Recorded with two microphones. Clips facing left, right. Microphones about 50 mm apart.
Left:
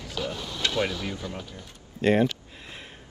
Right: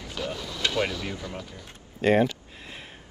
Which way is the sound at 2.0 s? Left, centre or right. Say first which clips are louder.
Right 1 dB; centre.